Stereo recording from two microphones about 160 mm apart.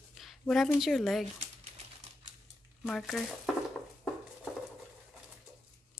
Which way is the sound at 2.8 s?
Centre (ahead or behind).